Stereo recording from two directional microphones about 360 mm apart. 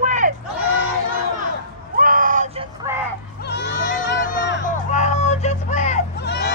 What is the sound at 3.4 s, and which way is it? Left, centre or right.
Music, left.